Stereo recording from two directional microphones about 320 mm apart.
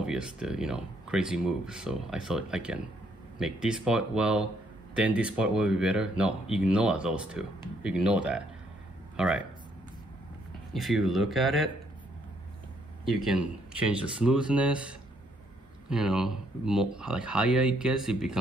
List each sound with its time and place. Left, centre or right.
0.0 s speech: centre
10.7 s speech: centre
13.0 s speech: centre